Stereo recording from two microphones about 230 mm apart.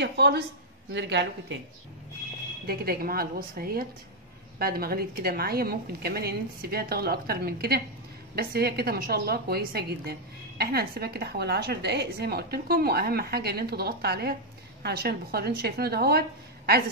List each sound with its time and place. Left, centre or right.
0.0 s a woman's voice: right
2.6 s a woman's voice: right